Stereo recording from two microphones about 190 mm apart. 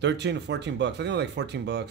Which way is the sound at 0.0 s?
65° right (ahead or behind).